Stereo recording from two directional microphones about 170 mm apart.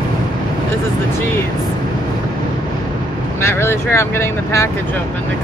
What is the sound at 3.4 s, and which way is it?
Speech, 15° left (ahead or behind).